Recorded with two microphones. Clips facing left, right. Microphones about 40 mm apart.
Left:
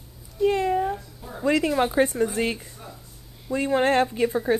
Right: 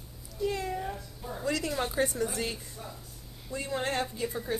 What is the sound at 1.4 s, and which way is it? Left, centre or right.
Speech, left.